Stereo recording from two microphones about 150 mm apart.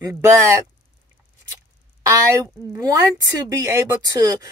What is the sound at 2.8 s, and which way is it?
Speech, 25° right (ahead or behind).